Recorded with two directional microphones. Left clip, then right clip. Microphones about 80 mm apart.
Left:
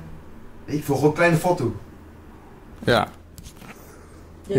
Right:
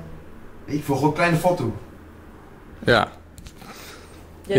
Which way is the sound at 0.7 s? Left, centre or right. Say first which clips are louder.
Left 1 dB; centre.